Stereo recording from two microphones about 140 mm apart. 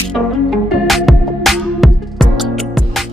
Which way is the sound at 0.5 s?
Centre (ahead or behind).